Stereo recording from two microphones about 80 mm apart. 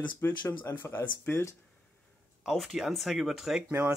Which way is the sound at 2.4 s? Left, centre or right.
Centre.